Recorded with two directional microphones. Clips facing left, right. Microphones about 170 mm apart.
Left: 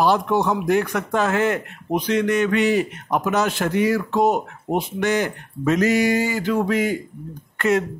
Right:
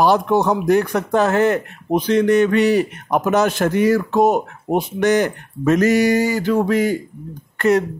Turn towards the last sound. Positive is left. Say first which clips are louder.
# right 4 dB
turn(degrees=-40)  # may be behind; listen again after turning